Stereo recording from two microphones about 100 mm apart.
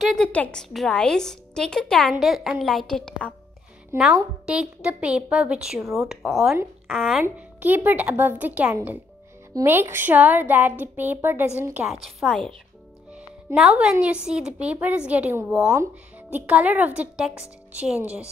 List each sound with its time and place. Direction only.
0.2 s a woman's voice: 10° left (ahead or behind)
3.9 s a woman's voice: 25° right (ahead or behind)
4.5 s a woman's voice: 10° right (ahead or behind)
7.3 s a woman's voice: 15° right (ahead or behind)
11.9 s a woman's voice: centre (ahead or behind)
12.3 s speech: 10° left (ahead or behind)
13.6 s a woman's voice: 10° right (ahead or behind)
15.6 s speech: 30° right (ahead or behind)
16.3 s a woman's voice: 15° right (ahead or behind)